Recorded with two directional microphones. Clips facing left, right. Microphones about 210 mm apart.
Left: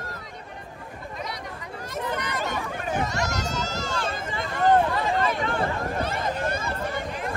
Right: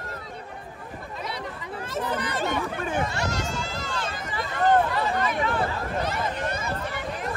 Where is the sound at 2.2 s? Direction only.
30° right (ahead or behind).